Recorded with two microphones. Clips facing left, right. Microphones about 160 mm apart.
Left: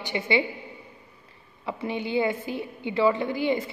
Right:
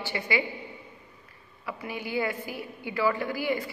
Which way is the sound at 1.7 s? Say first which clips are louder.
Left 5 dB; 25° left (ahead or behind).